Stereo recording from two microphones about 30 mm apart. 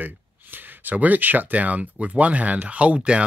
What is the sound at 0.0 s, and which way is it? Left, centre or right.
Speech, right.